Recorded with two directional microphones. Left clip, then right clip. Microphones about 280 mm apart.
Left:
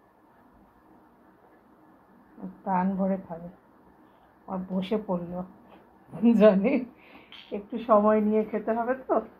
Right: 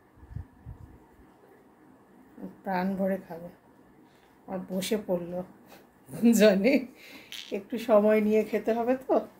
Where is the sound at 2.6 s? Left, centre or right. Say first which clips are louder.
Left 2 dB; centre.